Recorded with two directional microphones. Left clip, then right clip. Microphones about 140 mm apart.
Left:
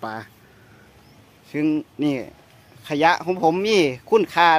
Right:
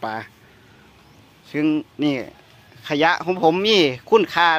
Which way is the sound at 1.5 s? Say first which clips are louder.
Right 1 dB; 15° left (ahead or behind).